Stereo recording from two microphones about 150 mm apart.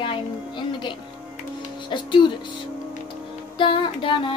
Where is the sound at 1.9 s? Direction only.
30° left (ahead or behind).